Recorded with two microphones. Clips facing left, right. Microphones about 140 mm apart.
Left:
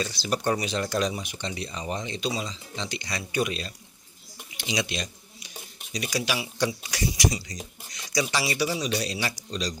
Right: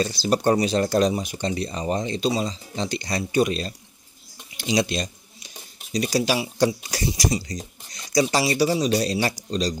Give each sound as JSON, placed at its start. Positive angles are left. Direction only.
{"t": 0.0, "sound": "speech", "side_deg": -35}
{"t": 4.6, "sound": "a sound", "side_deg": -40}
{"t": 5.9, "sound": "speech", "side_deg": -35}